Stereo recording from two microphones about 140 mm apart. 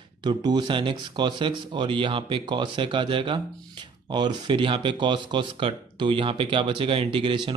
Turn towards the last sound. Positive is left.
turn(degrees=-35)  # may be behind; listen again after turning